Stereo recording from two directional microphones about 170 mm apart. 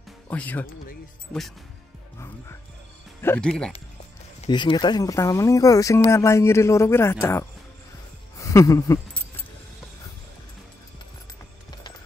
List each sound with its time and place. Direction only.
0.3 s speech: 10° left (ahead or behind)
2.1 s music: 15° left (ahead or behind)
3.2 s speech: 10° left (ahead or behind)
4.5 s speech: 25° left (ahead or behind)
8.4 s a sound: 20° left (ahead or behind)